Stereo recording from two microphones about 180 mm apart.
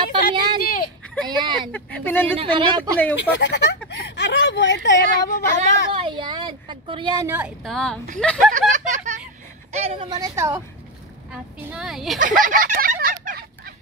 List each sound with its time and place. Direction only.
0.1 s a sound: 25° right (ahead or behind)
0.6 s a sound: 55° left (ahead or behind)
1.2 s speech: 25° right (ahead or behind)
1.7 s speech: 10° left (ahead or behind)
2.3 s speech: 30° right (ahead or behind)
3.2 s speech: 75° left (ahead or behind)
5.9 s speech: 25° right (ahead or behind)
7.2 s speech: 10° right (ahead or behind)
7.6 s a woman's voice: 5° left (ahead or behind)
8.5 s speech: 45° right (ahead or behind); by 10.6 s 15° right (ahead or behind)
11.3 s a woman's voice: 5° right (ahead or behind)
12.2 s a sound: 50° right (ahead or behind)